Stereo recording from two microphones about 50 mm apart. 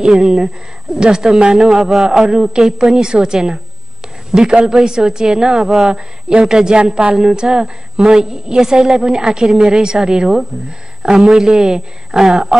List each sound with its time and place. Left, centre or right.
0.0 s a woman's voice: centre